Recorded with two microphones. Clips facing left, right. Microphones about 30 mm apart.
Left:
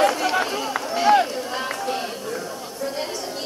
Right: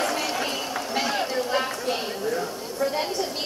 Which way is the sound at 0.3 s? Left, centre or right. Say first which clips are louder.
Left 5 dB; left.